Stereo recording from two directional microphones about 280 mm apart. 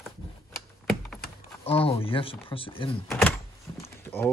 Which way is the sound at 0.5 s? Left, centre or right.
Centre.